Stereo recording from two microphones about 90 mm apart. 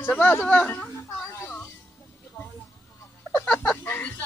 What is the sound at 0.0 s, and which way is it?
Speech, 20° left (ahead or behind).